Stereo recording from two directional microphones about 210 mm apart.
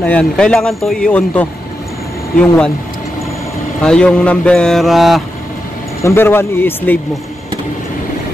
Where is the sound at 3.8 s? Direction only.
5° left (ahead or behind).